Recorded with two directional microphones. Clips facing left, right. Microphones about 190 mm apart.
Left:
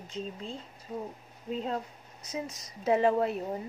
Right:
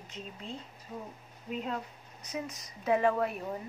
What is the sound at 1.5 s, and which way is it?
A woman's voice, 30° left (ahead or behind).